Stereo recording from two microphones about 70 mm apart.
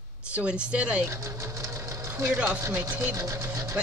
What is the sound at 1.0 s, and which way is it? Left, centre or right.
Speech, right.